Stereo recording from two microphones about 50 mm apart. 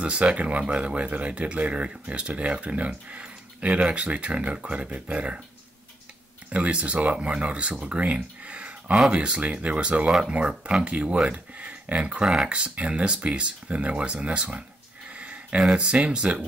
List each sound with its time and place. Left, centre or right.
0.0 s speech: right
6.5 s speech: right
8.0 s a sound: right
9.1 s speech: right
15.1 s a sound: right
15.7 s speech: right